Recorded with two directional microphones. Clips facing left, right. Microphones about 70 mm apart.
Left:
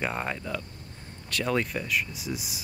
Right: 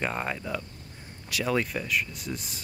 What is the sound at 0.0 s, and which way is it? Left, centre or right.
Speech, centre.